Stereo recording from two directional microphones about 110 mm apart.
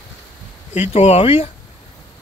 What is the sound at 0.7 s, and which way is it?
Speech, 80° left.